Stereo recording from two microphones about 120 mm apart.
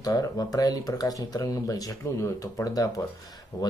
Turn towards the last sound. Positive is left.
turn(degrees=35)  # may be behind; listen again after turning